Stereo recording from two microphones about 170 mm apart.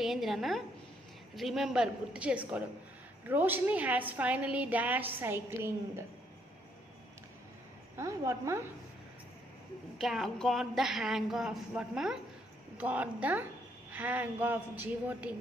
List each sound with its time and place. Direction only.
0.0 s a woman's voice: centre (ahead or behind)
7.9 s a woman's voice: 15° right (ahead or behind)
9.9 s a woman's voice: centre (ahead or behind)